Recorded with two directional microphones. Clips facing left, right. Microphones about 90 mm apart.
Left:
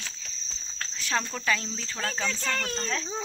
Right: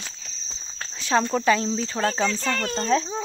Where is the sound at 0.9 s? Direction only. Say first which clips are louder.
Right 8 dB; 25° right (ahead or behind).